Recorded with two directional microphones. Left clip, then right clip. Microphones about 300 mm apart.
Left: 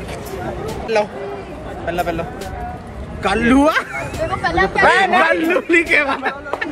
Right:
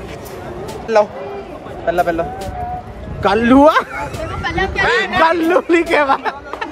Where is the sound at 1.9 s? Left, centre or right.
Right.